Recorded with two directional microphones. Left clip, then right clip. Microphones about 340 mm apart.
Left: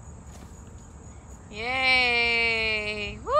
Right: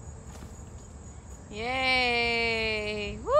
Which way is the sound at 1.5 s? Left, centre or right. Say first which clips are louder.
Left 4 dB; centre.